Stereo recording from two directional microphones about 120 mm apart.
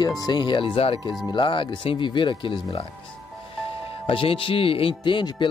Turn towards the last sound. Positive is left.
turn(degrees=45)  # may be behind; listen again after turning